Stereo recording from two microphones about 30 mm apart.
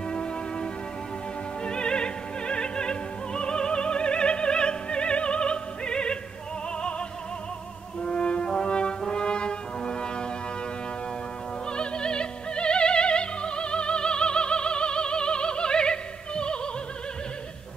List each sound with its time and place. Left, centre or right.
0.1 s music: left
1.6 s opera: left
8.0 s french horn: left
11.7 s music: left